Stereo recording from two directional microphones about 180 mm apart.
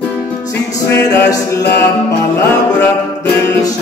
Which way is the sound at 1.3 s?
15° left (ahead or behind).